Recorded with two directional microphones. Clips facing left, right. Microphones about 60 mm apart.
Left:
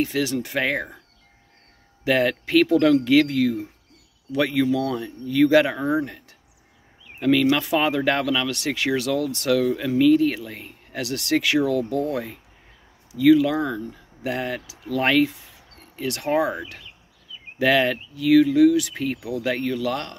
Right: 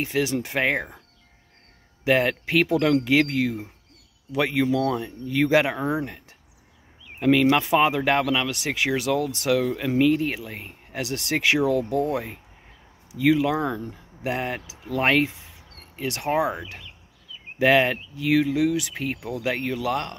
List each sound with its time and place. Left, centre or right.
0.0 s speech: right
2.0 s speech: centre
7.2 s speech: centre